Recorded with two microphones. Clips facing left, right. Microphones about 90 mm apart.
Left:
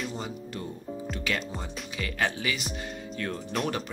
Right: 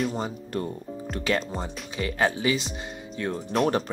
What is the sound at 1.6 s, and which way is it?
Speech, 30° right (ahead or behind).